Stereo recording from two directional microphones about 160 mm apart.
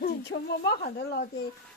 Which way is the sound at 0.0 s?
80° left.